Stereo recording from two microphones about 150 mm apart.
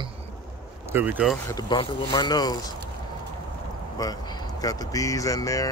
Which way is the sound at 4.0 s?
25° left (ahead or behind).